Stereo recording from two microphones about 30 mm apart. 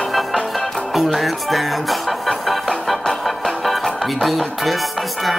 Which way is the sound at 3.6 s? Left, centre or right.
Centre.